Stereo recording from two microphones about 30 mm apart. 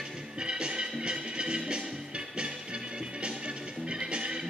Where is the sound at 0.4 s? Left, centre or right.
Right.